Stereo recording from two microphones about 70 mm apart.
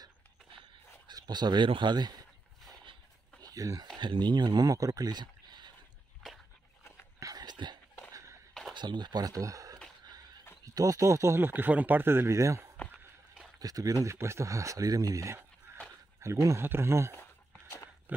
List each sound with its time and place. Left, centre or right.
1.0 s speech: right
3.4 s speech: right
4.0 s speech: right
7.2 s dog: right
8.1 s walk: right
8.7 s speech: right
12.3 s speech: right
13.6 s speech: right
14.1 s speech: right
16.3 s speech: right
16.6 s speech: right
17.2 s a sound: left